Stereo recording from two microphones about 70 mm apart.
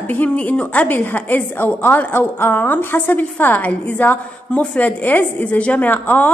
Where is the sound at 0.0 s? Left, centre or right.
Left.